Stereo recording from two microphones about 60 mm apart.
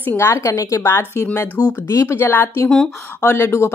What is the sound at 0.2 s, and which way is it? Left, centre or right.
Speech, left.